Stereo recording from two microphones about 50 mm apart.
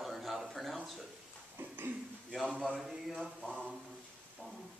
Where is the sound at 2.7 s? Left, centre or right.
Centre.